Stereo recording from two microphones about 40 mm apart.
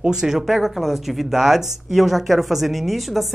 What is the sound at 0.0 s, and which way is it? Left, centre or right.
Speech, centre.